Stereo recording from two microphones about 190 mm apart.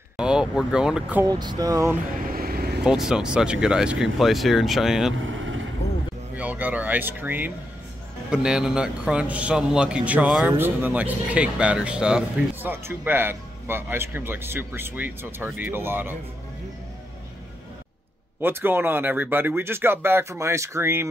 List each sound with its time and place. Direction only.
0.2 s a man's voice: 5° right (ahead or behind)
1.2 s speech: 20° right (ahead or behind)
2.1 s vehicle: 50° right (ahead or behind)
2.8 s a man's voice: 5° right (ahead or behind)
5.2 s vehicle: 90° right
6.3 s a man's voice: 10° right (ahead or behind)
18.4 s speech: 10° right (ahead or behind)